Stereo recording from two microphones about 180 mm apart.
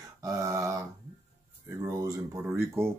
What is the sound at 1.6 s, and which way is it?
Speech, 15° right (ahead or behind).